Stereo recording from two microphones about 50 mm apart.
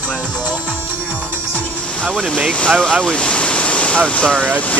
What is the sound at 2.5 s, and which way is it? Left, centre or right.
Speech, centre.